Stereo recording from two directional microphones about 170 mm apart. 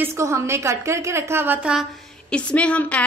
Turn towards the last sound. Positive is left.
turn(degrees=10)  # may be behind; listen again after turning